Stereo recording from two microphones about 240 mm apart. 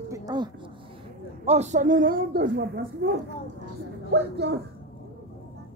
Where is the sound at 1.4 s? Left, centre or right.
Right.